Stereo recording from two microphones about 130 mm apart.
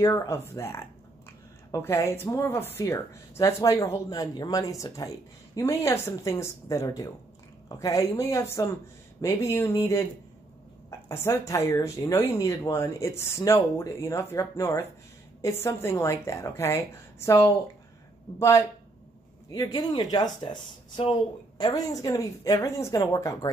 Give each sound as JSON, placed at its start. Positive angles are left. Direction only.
{"t": 0.0, "sound": "speech", "side_deg": 25}
{"t": 11.1, "sound": "speech", "side_deg": 20}
{"t": 19.5, "sound": "speech", "side_deg": 30}
{"t": 21.5, "sound": "speech", "side_deg": 30}